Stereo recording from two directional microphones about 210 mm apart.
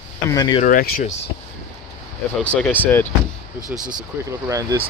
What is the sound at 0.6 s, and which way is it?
Speech, 40° left (ahead or behind).